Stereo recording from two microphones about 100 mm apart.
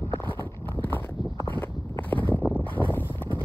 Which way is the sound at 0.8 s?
20° left (ahead or behind).